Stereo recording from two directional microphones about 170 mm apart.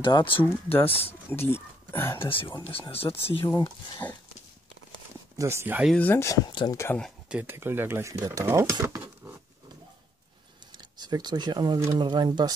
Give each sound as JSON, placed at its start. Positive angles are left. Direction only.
{"t": 0.0, "sound": "speech", "side_deg": 30}
{"t": 0.4, "sound": "speech", "side_deg": 10}
{"t": 2.2, "sound": "speech", "side_deg": 30}
{"t": 3.4, "sound": "speech", "side_deg": 25}
{"t": 5.4, "sound": "speech", "side_deg": -15}
{"t": 5.9, "sound": "speech", "side_deg": 15}
{"t": 7.2, "sound": "speech", "side_deg": -10}
{"t": 10.8, "sound": "speech", "side_deg": -25}